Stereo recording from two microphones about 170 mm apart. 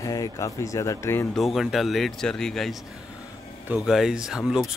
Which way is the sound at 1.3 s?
Centre (ahead or behind).